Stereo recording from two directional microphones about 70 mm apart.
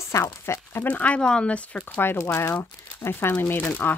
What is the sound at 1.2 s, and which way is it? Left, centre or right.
Speech, centre.